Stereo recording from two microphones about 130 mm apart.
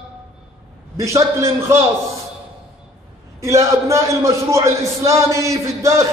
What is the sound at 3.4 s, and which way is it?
A man's voice, 25° right (ahead or behind).